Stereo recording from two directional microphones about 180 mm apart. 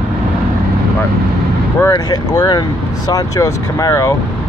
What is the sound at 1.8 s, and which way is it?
Speech, 20° left (ahead or behind).